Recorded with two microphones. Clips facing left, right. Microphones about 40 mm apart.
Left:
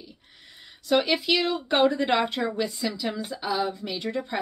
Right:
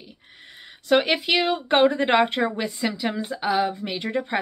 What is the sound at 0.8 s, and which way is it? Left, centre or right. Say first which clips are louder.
Speech: right 3 dB; right.